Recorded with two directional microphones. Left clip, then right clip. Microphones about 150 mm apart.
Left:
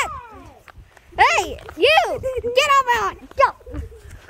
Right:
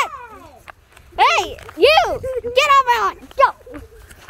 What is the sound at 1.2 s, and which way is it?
Speech, 10° left (ahead or behind).